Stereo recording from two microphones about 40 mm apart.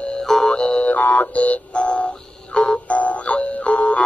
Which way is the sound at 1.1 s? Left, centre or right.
Left.